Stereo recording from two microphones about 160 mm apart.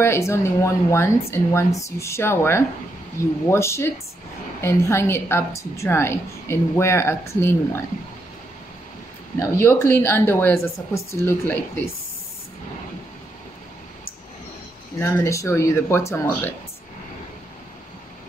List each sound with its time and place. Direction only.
0.0 s a woman's voice: 15° left (ahead or behind)
9.4 s a woman's voice: 20° left (ahead or behind)
15.0 s a woman's voice: 15° left (ahead or behind)